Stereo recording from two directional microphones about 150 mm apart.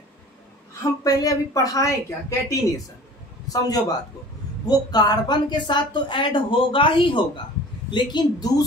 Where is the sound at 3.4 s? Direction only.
25° left (ahead or behind).